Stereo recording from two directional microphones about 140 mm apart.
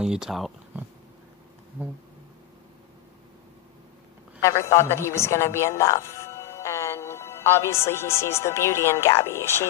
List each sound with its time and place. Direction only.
0.0 s speech: 5° right (ahead or behind)
4.4 s a woman's voice: 20° left (ahead or behind)